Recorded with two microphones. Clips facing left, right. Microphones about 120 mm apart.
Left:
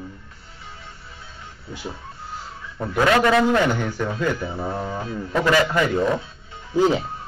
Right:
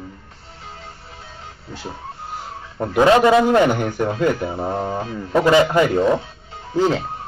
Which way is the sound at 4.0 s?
35° right (ahead or behind).